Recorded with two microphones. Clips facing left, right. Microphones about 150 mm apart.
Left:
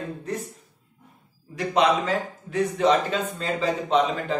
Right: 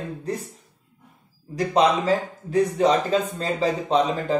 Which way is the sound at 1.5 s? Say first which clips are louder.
Right 2 dB; 35° right (ahead or behind).